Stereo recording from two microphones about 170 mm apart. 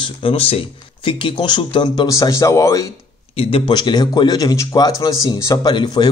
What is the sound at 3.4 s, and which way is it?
Speech, 30° left (ahead or behind).